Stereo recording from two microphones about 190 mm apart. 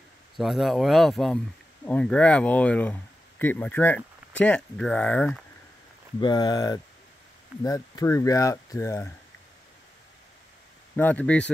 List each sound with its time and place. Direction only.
0.4 s speech: centre (ahead or behind)
6.2 s speech: 20° left (ahead or behind)
11.0 s speech: 10° left (ahead or behind)